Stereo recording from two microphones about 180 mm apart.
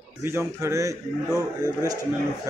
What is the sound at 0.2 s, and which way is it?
Speech, 15° right (ahead or behind).